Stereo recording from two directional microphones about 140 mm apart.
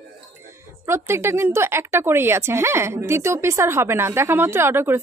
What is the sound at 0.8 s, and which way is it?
A woman's voice, 20° right (ahead or behind).